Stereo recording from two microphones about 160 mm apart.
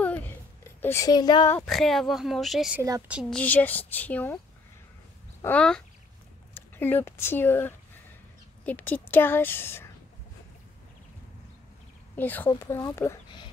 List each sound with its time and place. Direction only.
0.7 s speech: 15° left (ahead or behind)
1.7 s speech: centre (ahead or behind)
3.3 s a woman's voice: 10° left (ahead or behind)
5.4 s a woman's voice: 10° left (ahead or behind)
12.2 s a woman's voice: 10° left (ahead or behind)